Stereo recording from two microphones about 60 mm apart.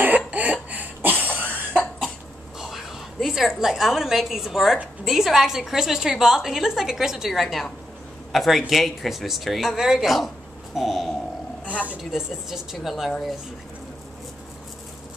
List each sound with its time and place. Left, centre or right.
0.3 s cough: right
1.7 s cough: centre
2.6 s a sound: centre
5.0 s a woman's voice: centre